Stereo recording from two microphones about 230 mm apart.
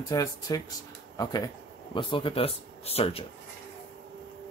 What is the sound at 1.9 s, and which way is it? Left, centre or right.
Speech, left.